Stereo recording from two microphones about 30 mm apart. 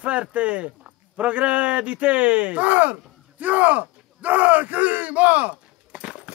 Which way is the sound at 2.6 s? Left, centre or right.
Right.